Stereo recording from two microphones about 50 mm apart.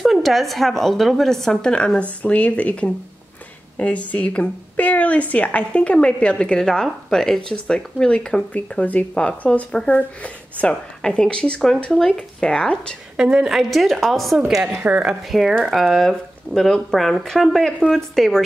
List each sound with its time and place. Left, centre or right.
0.0 s speech: centre
8.5 s speech: left
10.7 s speech: centre
13.2 s a woman's voice: centre
13.7 s speech: centre
16.0 s speech: centre